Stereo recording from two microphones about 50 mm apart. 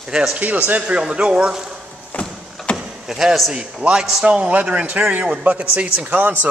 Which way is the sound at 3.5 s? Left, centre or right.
Centre.